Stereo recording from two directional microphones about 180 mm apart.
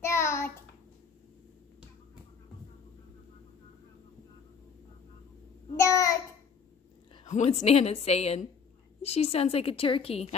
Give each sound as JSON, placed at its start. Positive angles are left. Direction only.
{"t": 0.0, "sound": "child singing", "side_deg": 15}
{"t": 5.8, "sound": "child singing", "side_deg": 15}
{"t": 7.2, "sound": "a woman's voice", "side_deg": 40}